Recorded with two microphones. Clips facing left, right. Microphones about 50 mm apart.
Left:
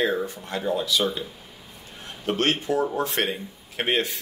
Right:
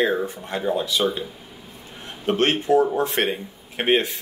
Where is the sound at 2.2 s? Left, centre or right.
Right.